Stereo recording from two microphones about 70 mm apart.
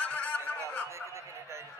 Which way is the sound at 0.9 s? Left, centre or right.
Right.